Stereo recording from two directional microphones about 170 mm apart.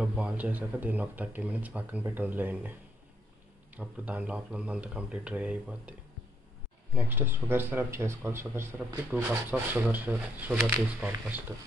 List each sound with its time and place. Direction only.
0.0 s speech: 5° right (ahead or behind)
3.7 s speech: 10° right (ahead or behind)
7.0 s speech: 15° right (ahead or behind)